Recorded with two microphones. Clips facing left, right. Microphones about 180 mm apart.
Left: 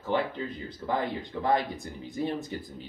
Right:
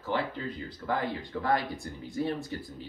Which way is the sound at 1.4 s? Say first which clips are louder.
Left 2 dB; 20° left (ahead or behind).